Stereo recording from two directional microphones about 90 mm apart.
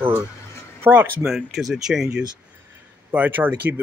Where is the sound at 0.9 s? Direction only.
30° right (ahead or behind).